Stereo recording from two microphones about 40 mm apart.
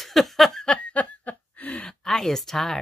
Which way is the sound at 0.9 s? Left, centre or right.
Left.